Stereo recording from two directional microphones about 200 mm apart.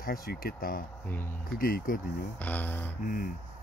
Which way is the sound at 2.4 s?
10° left (ahead or behind).